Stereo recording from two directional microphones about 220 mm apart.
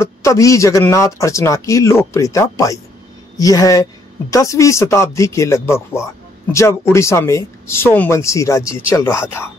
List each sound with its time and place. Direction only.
0.0 s speech: 15° left (ahead or behind)